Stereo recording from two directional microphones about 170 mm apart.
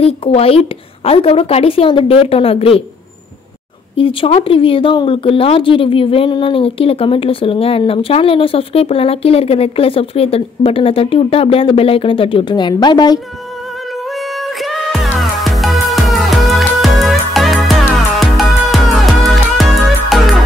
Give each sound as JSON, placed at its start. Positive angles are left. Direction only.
{"t": 0.0, "sound": "speech", "side_deg": 35}
{"t": 3.9, "sound": "speech", "side_deg": 30}
{"t": 14.1, "sound": "music", "side_deg": 0}